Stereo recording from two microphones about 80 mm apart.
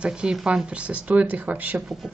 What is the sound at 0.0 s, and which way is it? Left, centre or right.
Speech, centre.